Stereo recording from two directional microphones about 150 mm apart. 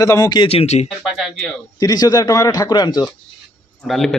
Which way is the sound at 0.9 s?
Centre (ahead or behind).